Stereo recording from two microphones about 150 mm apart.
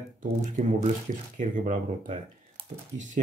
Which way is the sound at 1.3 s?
60° right (ahead or behind).